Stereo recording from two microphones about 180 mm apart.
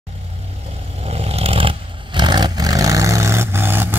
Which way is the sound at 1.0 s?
35° right (ahead or behind).